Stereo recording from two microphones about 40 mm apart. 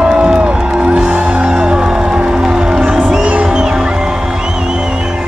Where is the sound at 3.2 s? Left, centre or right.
Right.